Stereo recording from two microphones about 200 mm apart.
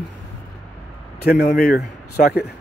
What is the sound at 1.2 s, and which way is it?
A man's voice, 50° left (ahead or behind).